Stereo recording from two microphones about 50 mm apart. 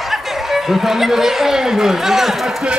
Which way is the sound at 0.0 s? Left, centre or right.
Centre.